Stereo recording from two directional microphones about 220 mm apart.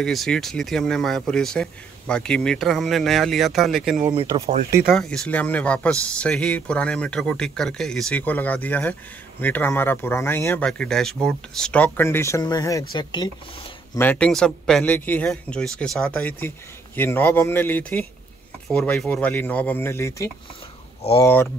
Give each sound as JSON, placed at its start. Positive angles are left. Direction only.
{"t": 0.0, "sound": "speech", "side_deg": 0}
{"t": 4.0, "sound": "speech", "side_deg": -25}
{"t": 4.9, "sound": "speech", "side_deg": 5}
{"t": 13.9, "sound": "speech", "side_deg": 5}
{"t": 21.0, "sound": "speech", "side_deg": 25}